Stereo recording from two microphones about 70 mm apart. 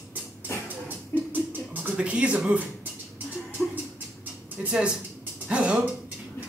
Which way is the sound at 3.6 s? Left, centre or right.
Centre.